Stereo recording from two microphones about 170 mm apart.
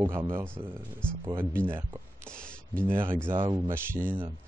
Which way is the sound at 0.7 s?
5° left (ahead or behind).